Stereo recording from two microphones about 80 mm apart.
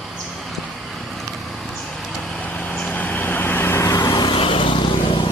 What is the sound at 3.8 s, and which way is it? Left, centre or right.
Vehicle, left.